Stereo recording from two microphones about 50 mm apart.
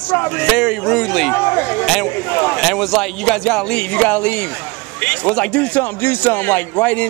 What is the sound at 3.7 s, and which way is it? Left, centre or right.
Speech, left.